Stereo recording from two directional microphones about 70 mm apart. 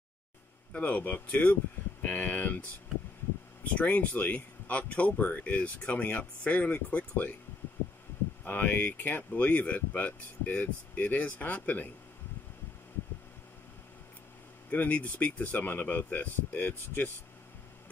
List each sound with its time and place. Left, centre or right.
0.7 s speech: left
3.7 s speech: left
8.5 s speech: left
14.7 s speech: left